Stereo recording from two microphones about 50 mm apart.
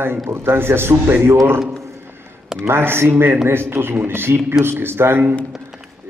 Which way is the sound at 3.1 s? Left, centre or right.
Right.